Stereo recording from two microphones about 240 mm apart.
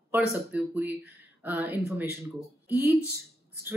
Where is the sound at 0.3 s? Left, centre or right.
Centre.